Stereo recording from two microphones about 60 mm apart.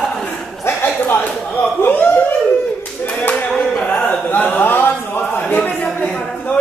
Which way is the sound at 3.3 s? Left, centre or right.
Centre.